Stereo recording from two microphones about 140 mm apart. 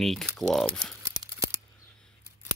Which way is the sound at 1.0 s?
20° right (ahead or behind).